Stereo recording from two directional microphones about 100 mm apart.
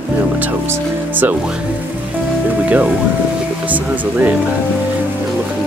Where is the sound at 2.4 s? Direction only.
15° right (ahead or behind).